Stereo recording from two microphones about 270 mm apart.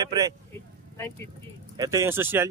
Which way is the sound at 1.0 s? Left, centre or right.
Centre.